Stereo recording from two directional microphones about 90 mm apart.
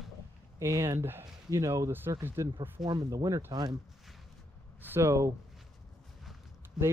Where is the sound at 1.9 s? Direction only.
25° right (ahead or behind).